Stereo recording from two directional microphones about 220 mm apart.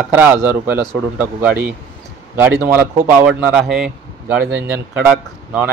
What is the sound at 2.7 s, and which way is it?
Speech, 10° right (ahead or behind).